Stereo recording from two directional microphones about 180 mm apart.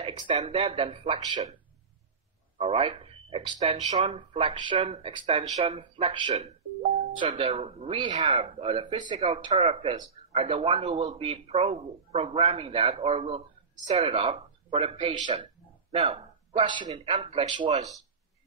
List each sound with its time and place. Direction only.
0.4 s speech: 35° right (ahead or behind)
2.5 s speech: 30° right (ahead or behind)